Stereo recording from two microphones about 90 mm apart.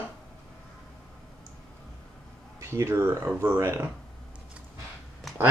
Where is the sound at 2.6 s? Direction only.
30° right (ahead or behind).